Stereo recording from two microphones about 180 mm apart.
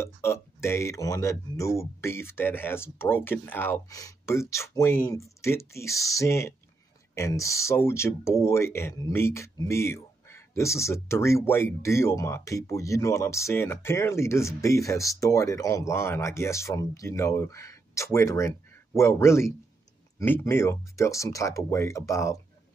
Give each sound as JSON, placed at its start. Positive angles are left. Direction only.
{"t": 0.0, "sound": "speech", "side_deg": 15}